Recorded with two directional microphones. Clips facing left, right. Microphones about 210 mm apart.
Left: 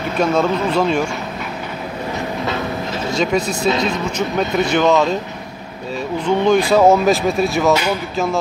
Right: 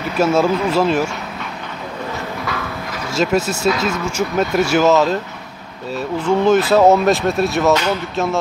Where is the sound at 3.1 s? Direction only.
5° right (ahead or behind).